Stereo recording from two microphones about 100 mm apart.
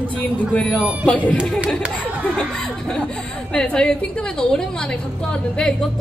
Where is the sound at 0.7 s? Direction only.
15° right (ahead or behind).